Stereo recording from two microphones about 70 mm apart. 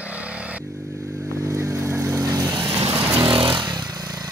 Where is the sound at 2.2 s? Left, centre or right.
Right.